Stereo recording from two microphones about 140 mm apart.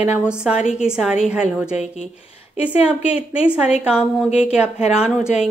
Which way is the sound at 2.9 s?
10° right (ahead or behind).